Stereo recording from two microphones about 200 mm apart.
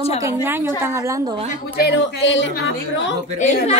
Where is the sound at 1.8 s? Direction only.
60° left (ahead or behind).